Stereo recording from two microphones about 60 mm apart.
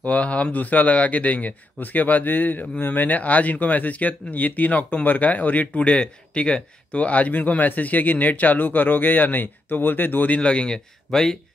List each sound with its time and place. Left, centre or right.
0.0 s speech: left